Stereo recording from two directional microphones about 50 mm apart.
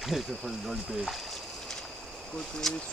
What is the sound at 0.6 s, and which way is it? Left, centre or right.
Speech, centre.